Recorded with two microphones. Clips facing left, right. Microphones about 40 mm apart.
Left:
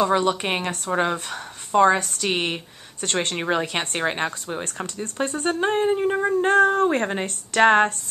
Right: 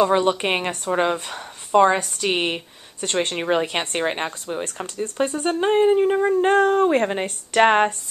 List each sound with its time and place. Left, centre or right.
0.1 s a woman's voice: centre
7.2 s speech: right